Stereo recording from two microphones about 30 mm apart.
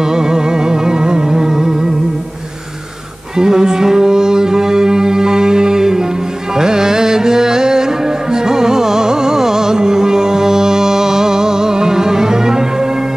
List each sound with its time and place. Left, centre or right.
0.0 s music: right
3.3 s music: right